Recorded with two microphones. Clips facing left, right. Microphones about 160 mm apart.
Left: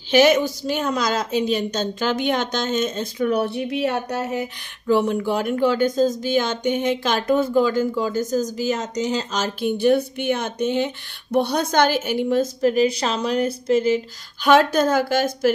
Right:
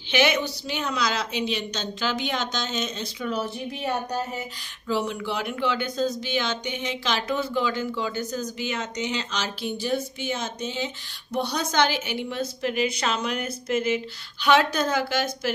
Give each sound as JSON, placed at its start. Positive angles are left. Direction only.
{"t": 0.1, "sound": "a woman's voice", "side_deg": 45}